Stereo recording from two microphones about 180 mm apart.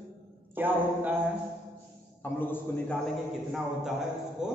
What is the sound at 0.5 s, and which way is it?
Speech, 10° right (ahead or behind).